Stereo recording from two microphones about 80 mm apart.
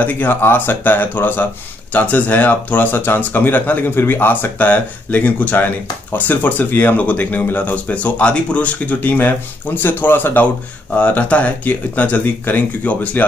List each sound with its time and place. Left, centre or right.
0.0 s speech: left